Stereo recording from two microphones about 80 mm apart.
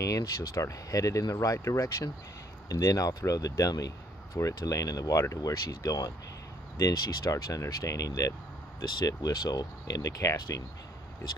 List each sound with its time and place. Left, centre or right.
0.1 s speech: left